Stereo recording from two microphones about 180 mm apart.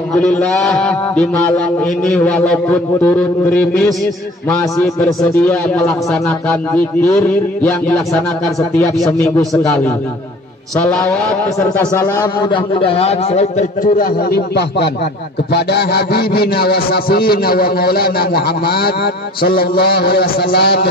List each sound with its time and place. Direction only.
0.1 s a man's voice: 5° left (ahead or behind)
5.0 s a man's voice: 10° left (ahead or behind)
7.6 s a man's voice: 5° left (ahead or behind)
8.5 s a man's voice: 15° left (ahead or behind)
11.8 s a man's voice: 20° left (ahead or behind); by 20.9 s 65° left (ahead or behind)